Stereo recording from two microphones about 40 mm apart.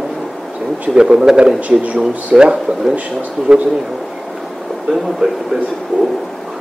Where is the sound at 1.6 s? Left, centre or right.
Right.